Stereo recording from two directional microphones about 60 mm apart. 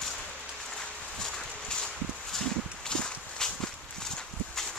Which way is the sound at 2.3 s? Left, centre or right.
Centre.